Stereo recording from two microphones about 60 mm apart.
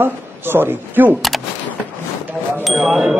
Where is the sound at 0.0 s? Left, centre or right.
Right.